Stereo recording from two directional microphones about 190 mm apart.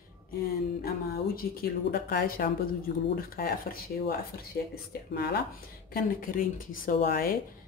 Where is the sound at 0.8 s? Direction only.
50° left (ahead or behind).